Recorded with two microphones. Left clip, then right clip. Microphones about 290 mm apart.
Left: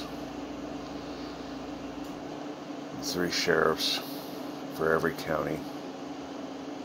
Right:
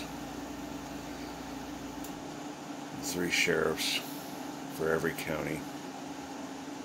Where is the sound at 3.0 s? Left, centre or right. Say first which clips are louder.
Even; centre.